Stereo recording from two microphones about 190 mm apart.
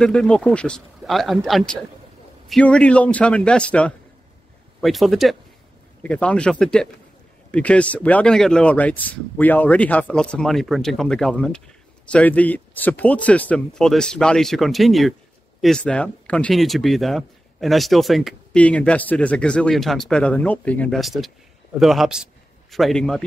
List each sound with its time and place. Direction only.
0.0 s a man's voice: 5° left (ahead or behind)